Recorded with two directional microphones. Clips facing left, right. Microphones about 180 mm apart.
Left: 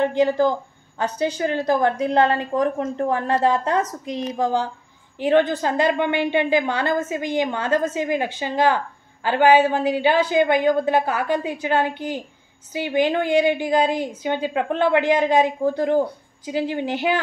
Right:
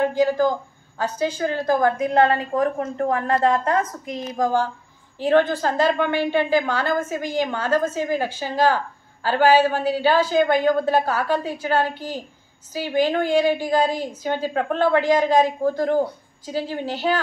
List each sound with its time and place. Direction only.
0.0 s a woman's voice: 20° left (ahead or behind)
3.7 s a woman's voice: 25° left (ahead or behind)